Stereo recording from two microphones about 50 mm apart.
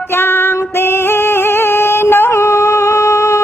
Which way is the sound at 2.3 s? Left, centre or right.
Left.